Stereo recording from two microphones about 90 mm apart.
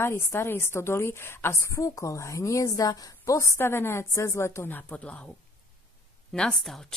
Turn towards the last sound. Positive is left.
turn(degrees=5)  # may be behind; listen again after turning